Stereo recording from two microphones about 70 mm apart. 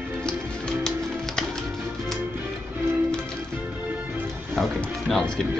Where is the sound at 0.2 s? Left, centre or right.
Centre.